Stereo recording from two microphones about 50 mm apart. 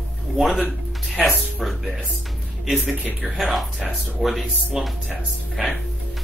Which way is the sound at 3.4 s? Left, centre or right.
Centre.